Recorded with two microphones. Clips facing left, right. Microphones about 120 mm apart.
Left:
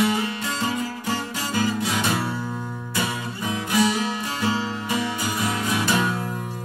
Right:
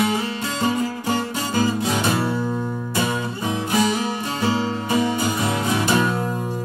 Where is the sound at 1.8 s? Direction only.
25° right (ahead or behind).